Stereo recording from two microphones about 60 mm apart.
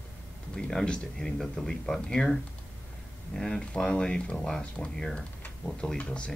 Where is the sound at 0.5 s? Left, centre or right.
Centre.